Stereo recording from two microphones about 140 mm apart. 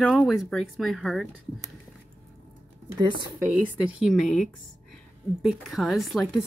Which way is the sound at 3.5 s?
5° right (ahead or behind).